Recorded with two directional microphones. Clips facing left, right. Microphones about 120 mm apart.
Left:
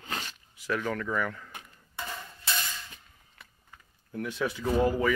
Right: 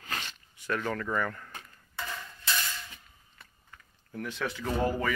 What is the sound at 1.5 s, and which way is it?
Dishes, 15° left (ahead or behind).